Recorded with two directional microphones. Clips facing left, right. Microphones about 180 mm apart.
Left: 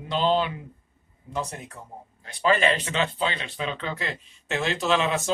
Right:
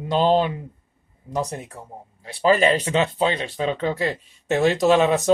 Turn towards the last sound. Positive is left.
turn(degrees=-40)  # may be behind; listen again after turning